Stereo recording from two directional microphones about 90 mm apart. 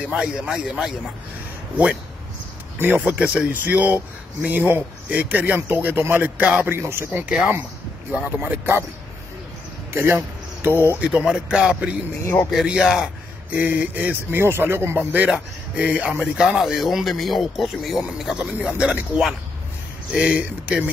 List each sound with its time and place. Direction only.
0.0 s speech: 10° right (ahead or behind)
2.8 s speech: 20° right (ahead or behind)
8.1 s speech: 20° right (ahead or behind)
9.9 s speech: 30° right (ahead or behind)
11.0 s speech: 10° right (ahead or behind)
13.5 s speech: 20° right (ahead or behind)